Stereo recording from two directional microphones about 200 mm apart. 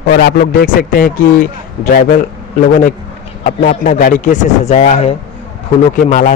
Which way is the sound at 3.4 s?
40° left (ahead or behind).